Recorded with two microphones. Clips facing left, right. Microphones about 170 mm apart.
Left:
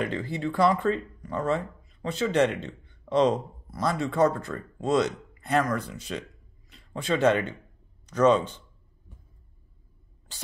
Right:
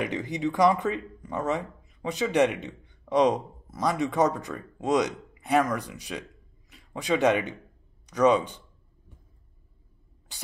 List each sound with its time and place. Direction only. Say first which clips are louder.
0.0 s a man's voice: right 1 dB; 15° right (ahead or behind)